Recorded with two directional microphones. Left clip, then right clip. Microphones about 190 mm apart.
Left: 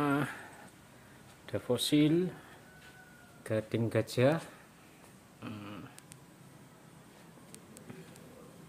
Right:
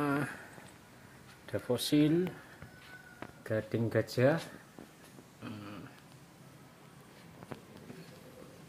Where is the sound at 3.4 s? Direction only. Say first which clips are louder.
Left 1 dB; 10° left (ahead or behind).